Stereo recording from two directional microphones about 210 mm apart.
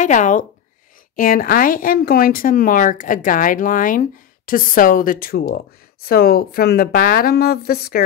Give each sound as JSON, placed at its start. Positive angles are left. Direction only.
{"t": 0.0, "sound": "a woman's voice", "side_deg": 35}